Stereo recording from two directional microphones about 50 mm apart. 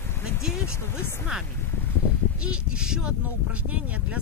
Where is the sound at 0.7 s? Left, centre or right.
Left.